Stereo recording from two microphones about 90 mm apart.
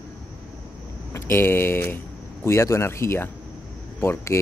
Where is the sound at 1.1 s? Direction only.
30° left (ahead or behind).